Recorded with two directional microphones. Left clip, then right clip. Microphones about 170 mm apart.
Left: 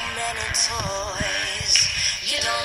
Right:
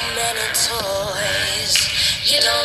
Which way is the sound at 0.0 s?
50° right (ahead or behind).